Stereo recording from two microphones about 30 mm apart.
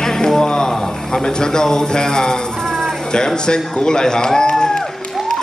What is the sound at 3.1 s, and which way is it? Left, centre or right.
A man's voice, left.